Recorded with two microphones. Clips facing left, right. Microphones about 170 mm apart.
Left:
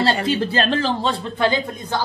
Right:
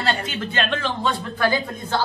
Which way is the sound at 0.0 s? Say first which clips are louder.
Left 6 dB; 30° left (ahead or behind).